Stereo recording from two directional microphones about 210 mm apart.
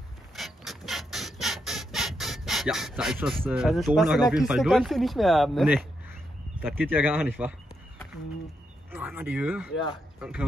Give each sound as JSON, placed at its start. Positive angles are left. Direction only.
{"t": 0.4, "sound": "ratchet", "side_deg": 0}
{"t": 6.6, "sound": "speech", "side_deg": -10}
{"t": 8.9, "sound": "speech", "side_deg": -10}